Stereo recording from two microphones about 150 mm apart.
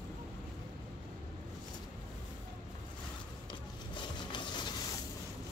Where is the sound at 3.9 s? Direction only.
30° left (ahead or behind).